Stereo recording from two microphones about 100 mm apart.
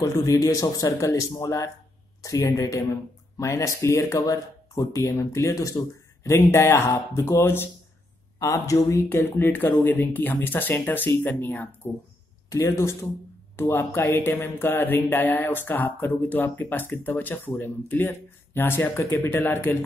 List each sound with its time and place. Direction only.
0.0 s speech: 35° left (ahead or behind)
8.4 s speech: 35° left (ahead or behind)